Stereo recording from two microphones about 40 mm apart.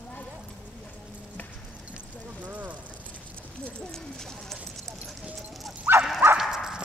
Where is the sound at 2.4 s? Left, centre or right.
Right.